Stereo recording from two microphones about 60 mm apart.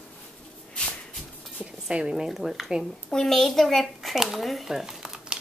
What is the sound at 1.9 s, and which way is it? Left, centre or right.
A child's voice, centre.